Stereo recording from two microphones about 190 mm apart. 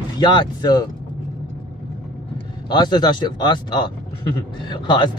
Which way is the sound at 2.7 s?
20° left (ahead or behind).